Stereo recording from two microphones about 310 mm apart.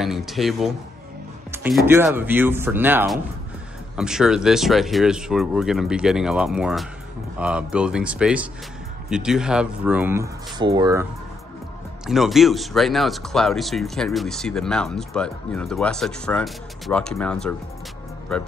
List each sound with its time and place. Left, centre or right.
0.0 s speech: centre
12.1 s speech: centre